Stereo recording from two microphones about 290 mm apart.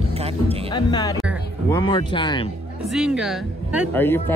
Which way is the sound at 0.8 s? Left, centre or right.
Centre.